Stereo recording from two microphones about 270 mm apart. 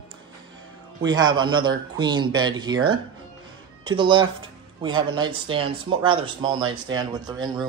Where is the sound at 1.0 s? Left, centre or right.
Centre.